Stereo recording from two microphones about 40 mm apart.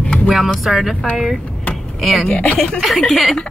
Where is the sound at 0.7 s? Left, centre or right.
Centre.